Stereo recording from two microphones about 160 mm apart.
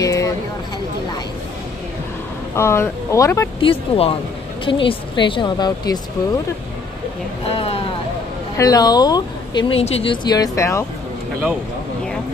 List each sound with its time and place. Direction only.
0.0 s a sound: 20° left (ahead or behind)
2.5 s speech: 15° left (ahead or behind)
3.6 s speech: 35° left (ahead or behind)
7.4 s a sound: 35° left (ahead or behind)
8.5 s speech: 20° left (ahead or behind); by 10.1 s 40° left (ahead or behind)
10.2 s speech: 25° left (ahead or behind)